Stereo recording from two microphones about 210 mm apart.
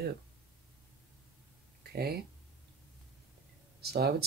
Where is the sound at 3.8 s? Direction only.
50° right (ahead or behind).